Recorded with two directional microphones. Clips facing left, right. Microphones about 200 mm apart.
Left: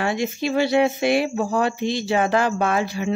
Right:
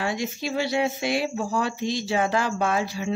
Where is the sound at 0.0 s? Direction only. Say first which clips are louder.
Left 5 dB; 60° left (ahead or behind).